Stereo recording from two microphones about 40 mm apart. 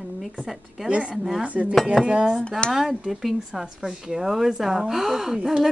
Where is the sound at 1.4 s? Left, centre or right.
Right.